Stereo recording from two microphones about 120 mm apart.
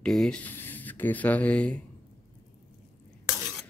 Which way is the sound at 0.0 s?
5° left (ahead or behind).